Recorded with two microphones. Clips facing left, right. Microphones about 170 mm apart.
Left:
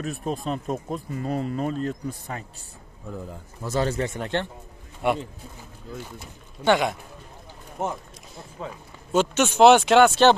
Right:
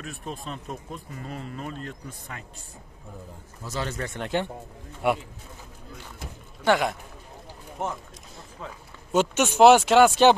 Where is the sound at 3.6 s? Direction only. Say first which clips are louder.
Left 8 dB; 60° left (ahead or behind).